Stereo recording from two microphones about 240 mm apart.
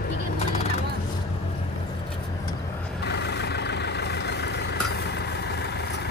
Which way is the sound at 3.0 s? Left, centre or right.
Left.